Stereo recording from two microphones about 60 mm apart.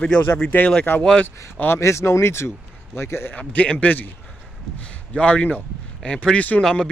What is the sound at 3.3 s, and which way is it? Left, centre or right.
A man's voice, left.